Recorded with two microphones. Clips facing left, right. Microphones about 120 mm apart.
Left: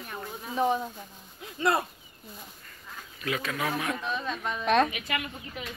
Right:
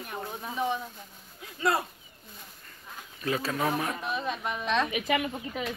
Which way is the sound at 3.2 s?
30° right (ahead or behind).